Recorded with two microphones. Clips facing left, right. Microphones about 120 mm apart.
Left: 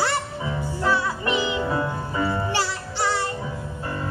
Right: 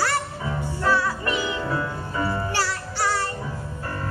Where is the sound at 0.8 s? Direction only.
15° left (ahead or behind).